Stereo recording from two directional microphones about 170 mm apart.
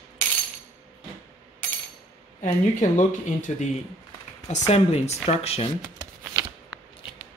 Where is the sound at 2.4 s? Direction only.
45° left (ahead or behind).